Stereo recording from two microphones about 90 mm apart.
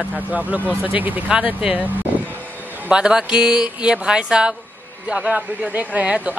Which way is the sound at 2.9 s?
10° right (ahead or behind).